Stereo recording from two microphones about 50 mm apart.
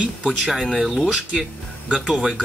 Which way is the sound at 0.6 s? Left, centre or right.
Centre.